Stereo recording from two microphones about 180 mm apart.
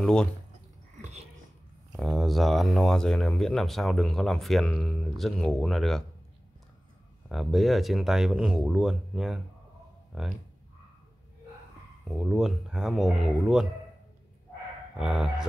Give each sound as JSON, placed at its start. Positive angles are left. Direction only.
{"t": 0.0, "sound": "speech", "side_deg": 5}
{"t": 1.9, "sound": "speech", "side_deg": 0}
{"t": 7.2, "sound": "speech", "side_deg": 0}
{"t": 12.1, "sound": "speech", "side_deg": 0}
{"t": 15.0, "sound": "speech", "side_deg": -5}